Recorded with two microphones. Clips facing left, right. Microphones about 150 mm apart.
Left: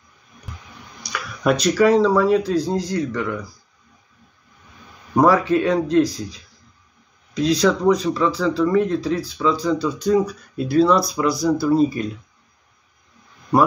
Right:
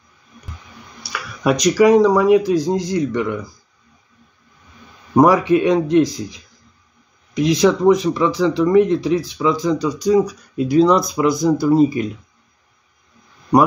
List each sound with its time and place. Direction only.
1.0 s speech: 5° right (ahead or behind)
5.1 s speech: 15° right (ahead or behind)